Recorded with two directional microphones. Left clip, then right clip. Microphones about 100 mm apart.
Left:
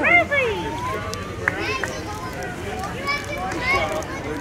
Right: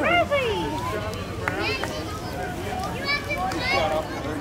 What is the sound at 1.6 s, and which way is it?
Run, 10° left (ahead or behind).